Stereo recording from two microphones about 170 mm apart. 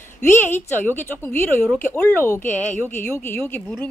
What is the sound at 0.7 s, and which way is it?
A woman's voice, 10° left (ahead or behind).